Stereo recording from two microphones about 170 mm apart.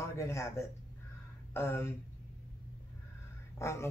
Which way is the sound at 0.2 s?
15° left (ahead or behind).